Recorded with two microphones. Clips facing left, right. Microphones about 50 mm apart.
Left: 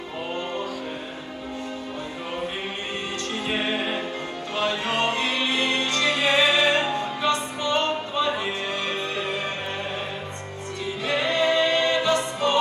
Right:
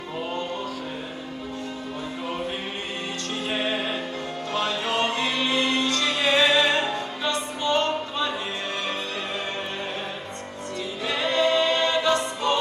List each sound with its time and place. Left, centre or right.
3.4 s music: centre
6.3 s music: centre
7.2 s music: left
11.1 s choir: left